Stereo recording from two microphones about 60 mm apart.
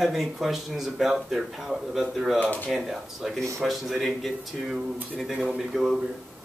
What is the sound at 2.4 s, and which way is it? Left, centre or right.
Speech, left.